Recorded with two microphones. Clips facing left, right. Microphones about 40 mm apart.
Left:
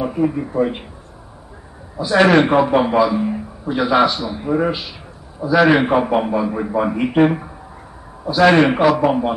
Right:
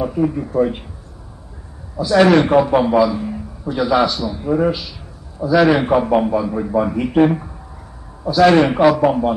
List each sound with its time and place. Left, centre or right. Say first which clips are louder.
0.0 s speech: even; centre
2.0 s a man's voice: right 1 dB; centre